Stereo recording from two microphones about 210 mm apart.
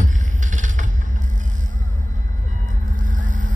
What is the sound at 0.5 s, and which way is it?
Vehicle, 35° right (ahead or behind).